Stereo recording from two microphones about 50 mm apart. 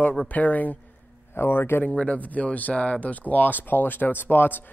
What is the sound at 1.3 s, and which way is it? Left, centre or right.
Speech, left.